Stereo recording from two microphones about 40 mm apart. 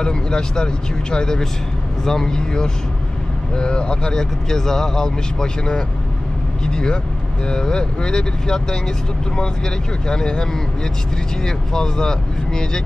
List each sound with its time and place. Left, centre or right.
0.0 s speech: centre
10.0 s speech: centre